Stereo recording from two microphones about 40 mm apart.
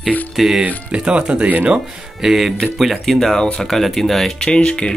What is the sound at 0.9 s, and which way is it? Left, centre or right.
Speech, right.